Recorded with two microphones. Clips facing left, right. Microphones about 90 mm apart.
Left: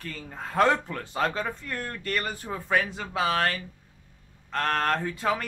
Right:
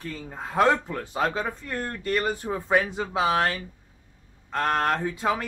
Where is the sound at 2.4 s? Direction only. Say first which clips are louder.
Right 3 dB; 20° right (ahead or behind).